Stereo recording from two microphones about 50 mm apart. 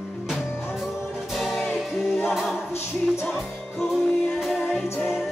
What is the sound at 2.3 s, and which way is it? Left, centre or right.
A capella, centre.